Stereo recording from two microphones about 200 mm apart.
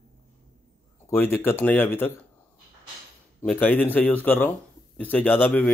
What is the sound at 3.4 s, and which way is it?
Speech, 5° left (ahead or behind).